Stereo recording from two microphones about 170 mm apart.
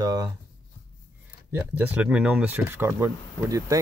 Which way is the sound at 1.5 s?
10° right (ahead or behind).